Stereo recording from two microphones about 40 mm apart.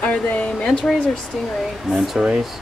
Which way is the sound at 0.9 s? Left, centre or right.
Centre.